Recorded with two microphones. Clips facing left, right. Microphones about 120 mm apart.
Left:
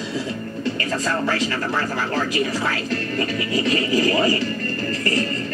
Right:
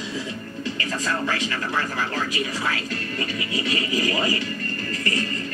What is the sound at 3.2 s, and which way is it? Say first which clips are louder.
Scratch: left 5 dB; 50° left (ahead or behind).